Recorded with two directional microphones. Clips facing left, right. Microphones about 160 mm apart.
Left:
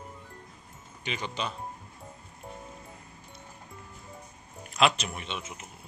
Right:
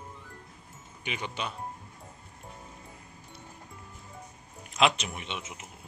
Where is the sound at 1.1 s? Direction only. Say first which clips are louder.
Left 1 dB; 10° right (ahead or behind).